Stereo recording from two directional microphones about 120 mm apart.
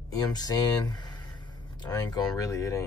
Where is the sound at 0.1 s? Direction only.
30° left (ahead or behind).